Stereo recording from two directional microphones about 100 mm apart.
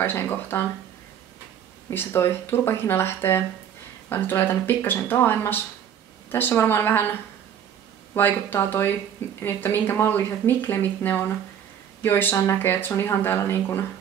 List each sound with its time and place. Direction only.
0.0 s speech: 20° left (ahead or behind)
1.9 s speech: 25° left (ahead or behind)